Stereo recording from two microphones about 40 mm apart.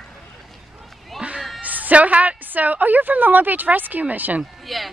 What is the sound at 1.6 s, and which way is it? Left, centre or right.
A woman's voice, right.